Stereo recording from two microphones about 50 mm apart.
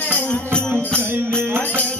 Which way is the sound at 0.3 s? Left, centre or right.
Left.